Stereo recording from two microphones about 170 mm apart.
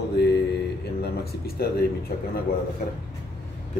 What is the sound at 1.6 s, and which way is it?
Speech, 70° left (ahead or behind).